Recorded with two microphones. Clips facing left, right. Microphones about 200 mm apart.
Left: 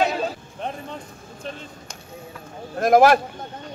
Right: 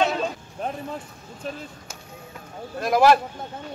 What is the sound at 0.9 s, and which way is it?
Speech, 5° right (ahead or behind).